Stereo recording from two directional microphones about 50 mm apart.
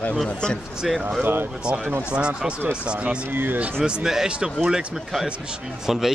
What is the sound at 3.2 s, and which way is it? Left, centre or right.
Speech, right.